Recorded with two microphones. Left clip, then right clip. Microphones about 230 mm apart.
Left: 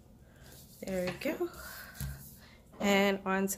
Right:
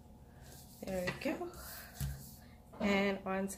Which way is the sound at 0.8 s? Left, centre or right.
Left.